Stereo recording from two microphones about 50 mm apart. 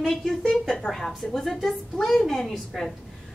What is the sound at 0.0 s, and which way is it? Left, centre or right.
A woman's voice, centre.